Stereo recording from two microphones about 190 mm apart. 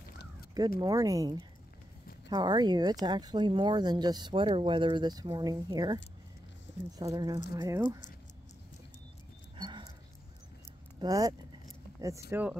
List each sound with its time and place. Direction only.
0.7 s speech: 20° right (ahead or behind)
7.0 s speech: 20° right (ahead or behind)
9.6 s dog: 25° right (ahead or behind)
11.0 s speech: 20° right (ahead or behind)